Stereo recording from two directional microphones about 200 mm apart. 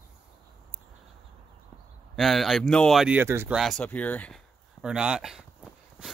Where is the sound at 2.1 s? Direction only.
Centre (ahead or behind).